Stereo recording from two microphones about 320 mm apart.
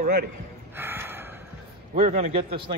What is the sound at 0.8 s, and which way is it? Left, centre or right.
Gasp, centre.